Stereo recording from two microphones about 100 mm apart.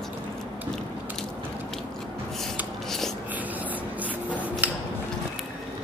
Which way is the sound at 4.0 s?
15° right (ahead or behind).